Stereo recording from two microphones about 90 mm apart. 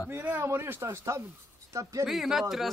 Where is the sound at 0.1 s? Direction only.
20° right (ahead or behind).